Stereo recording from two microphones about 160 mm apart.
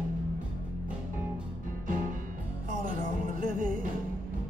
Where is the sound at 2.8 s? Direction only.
60° right (ahead or behind).